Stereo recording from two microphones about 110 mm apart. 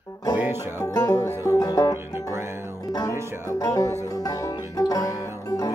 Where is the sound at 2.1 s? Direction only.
25° right (ahead or behind).